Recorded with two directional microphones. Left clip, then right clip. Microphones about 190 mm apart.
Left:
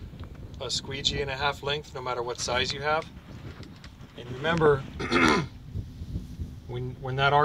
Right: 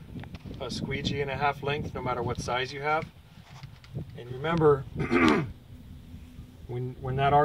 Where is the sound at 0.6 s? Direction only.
20° right (ahead or behind).